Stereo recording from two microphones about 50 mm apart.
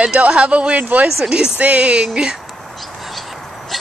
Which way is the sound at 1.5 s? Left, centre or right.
Right.